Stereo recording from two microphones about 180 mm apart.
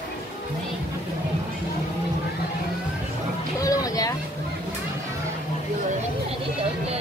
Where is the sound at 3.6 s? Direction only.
20° left (ahead or behind).